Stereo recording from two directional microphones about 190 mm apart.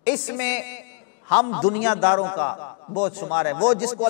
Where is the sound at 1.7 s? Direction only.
10° left (ahead or behind).